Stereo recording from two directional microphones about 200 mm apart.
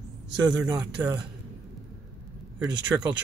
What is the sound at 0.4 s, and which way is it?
Speech, 20° right (ahead or behind).